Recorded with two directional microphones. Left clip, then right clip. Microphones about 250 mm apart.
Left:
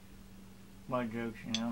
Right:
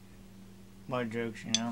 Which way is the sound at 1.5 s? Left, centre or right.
Right.